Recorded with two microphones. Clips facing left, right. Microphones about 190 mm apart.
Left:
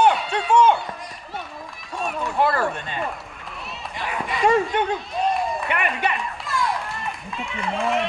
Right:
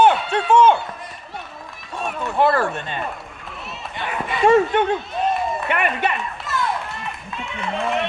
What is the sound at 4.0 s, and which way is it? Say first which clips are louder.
Run: right 2 dB; centre (ahead or behind).